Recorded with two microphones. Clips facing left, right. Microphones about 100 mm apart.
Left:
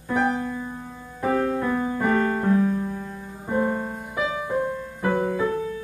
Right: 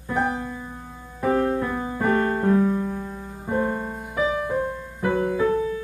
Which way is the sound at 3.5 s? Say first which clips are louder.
Left 1 dB; centre (ahead or behind).